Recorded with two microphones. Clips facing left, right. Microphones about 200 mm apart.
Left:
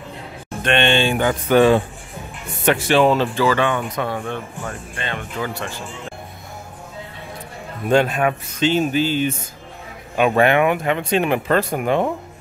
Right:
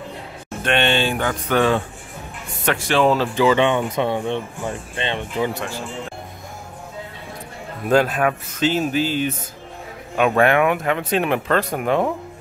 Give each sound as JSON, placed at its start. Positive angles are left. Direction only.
{"t": 0.7, "sound": "speech", "side_deg": -5}
{"t": 1.1, "sound": "speech", "side_deg": 10}
{"t": 3.3, "sound": "speech", "side_deg": -20}
{"t": 7.9, "sound": "speech", "side_deg": 0}